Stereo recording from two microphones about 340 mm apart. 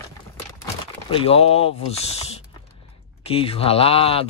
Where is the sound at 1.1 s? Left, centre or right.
Centre.